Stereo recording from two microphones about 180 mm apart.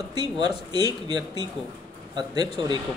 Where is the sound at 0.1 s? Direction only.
25° right (ahead or behind).